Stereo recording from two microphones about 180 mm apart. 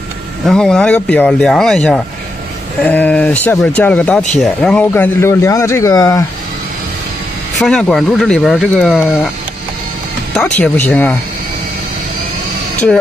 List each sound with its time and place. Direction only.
0.5 s speech: 5° left (ahead or behind)
7.5 s speech: centre (ahead or behind)
10.3 s speech: 5° left (ahead or behind)